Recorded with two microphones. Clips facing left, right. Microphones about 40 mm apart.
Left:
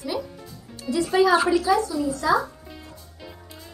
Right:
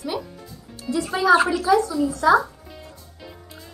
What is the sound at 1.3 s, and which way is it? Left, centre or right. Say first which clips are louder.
Music: right 3 dB; right.